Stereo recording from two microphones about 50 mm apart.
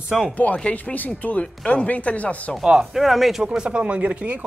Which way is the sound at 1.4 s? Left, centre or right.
Left.